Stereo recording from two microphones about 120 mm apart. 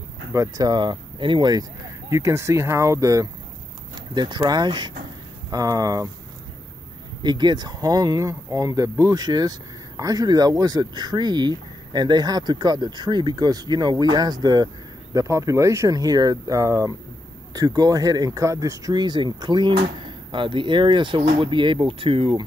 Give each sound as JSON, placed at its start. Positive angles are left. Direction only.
{"t": 0.3, "sound": "speech", "side_deg": -30}
{"t": 4.1, "sound": "speech", "side_deg": -40}
{"t": 7.2, "sound": "speech", "side_deg": -35}